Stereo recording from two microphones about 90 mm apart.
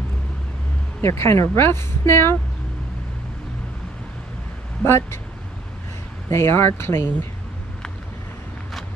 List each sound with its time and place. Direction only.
1.0 s speech: 30° left (ahead or behind)
4.8 s speech: 25° left (ahead or behind)
6.2 s speech: 25° left (ahead or behind)